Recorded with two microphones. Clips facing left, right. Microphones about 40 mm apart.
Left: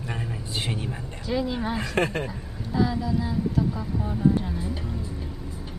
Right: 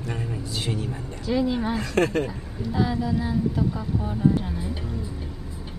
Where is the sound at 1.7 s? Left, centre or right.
Centre.